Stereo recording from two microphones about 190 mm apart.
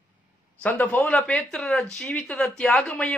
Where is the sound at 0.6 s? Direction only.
10° left (ahead or behind).